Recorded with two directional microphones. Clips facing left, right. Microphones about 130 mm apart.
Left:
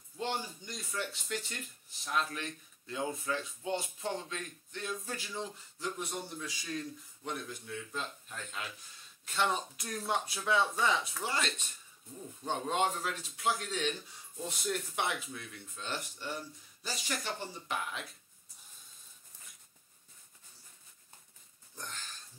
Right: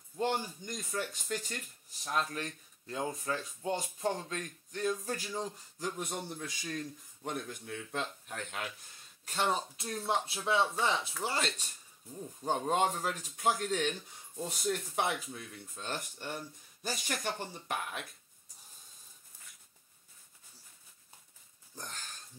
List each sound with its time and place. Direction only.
0.2 s speech: 45° right (ahead or behind); by 8.6 s 65° right (ahead or behind)
9.2 s speech: 35° right (ahead or behind)
14.6 s speech: 40° right (ahead or behind)
21.7 s a sound: 40° right (ahead or behind)